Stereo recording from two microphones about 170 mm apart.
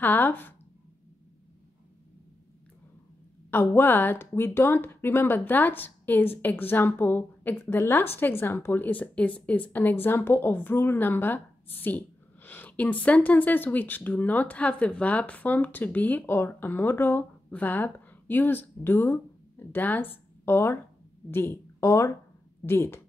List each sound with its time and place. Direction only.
0.0 s speech: 10° left (ahead or behind)
3.4 s speech: 15° left (ahead or behind)